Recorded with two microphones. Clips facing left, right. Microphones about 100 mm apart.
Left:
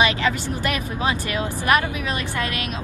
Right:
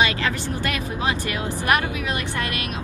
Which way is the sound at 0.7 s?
25° left (ahead or behind).